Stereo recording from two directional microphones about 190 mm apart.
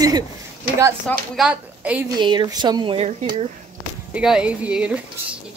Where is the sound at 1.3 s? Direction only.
5° right (ahead or behind).